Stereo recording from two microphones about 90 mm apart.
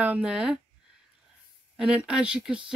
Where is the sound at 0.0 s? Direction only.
15° right (ahead or behind).